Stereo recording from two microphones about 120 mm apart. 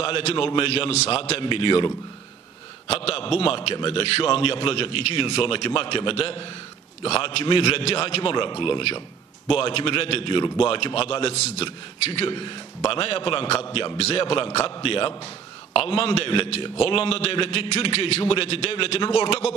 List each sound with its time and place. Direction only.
0.2 s a man's voice: 50° left (ahead or behind)
1.4 s a man's voice: 45° left (ahead or behind)
2.9 s a man's voice: 55° left (ahead or behind)
12.3 s a man's voice: 40° left (ahead or behind); by 19.5 s 55° left (ahead or behind)